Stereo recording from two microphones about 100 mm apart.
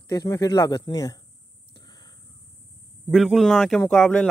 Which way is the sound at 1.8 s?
45° left (ahead or behind).